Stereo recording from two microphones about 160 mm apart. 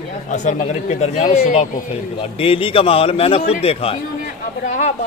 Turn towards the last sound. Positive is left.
turn(degrees=45)  # may be behind; listen again after turning